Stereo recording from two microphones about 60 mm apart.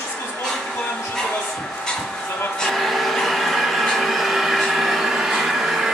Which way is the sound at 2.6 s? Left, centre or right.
Centre.